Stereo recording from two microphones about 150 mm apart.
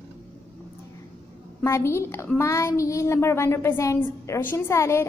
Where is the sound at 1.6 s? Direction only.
20° left (ahead or behind).